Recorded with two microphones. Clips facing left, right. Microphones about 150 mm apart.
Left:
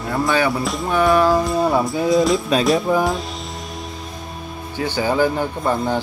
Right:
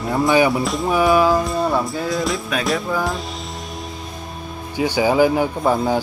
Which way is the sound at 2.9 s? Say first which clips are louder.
Left 5 dB; 20° left (ahead or behind).